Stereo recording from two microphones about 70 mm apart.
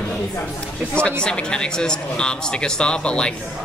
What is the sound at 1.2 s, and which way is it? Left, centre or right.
Speech, centre.